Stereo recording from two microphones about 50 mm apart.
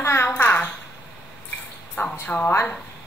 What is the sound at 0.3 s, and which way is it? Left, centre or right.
Babbling, left.